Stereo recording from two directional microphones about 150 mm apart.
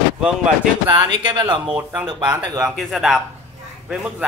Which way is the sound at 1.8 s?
10° right (ahead or behind).